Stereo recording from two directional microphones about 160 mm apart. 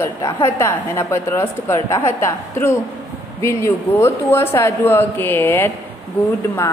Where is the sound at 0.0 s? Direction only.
20° left (ahead or behind).